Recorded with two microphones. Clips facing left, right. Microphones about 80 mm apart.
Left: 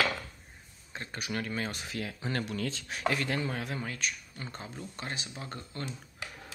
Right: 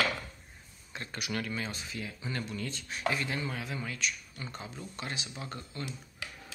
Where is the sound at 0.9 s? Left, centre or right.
Left.